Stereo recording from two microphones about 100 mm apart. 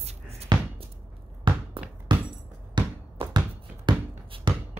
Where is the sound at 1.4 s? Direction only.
50° right (ahead or behind).